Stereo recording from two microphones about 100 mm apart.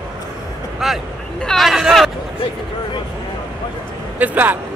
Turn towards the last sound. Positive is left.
turn(degrees=-20)  # may be behind; listen again after turning